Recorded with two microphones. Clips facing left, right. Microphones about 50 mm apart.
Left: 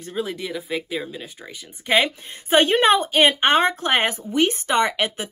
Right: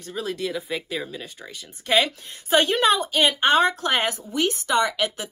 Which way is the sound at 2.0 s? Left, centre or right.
Left.